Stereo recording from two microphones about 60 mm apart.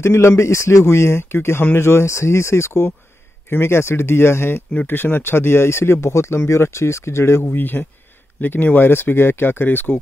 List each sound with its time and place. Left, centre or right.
0.0 s speech: left